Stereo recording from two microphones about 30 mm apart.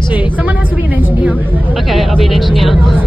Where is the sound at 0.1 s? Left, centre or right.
Right.